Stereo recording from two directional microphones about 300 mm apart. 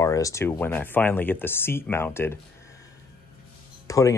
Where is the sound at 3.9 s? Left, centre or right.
Centre.